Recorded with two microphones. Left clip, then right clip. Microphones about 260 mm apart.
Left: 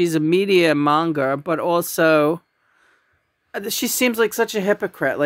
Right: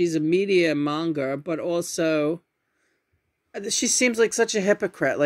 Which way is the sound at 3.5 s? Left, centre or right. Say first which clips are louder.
Left 1 dB; left.